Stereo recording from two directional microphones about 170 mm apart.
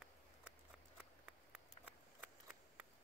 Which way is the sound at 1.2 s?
10° right (ahead or behind).